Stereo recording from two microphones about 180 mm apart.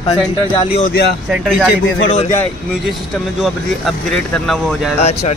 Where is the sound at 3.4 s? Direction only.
Centre (ahead or behind).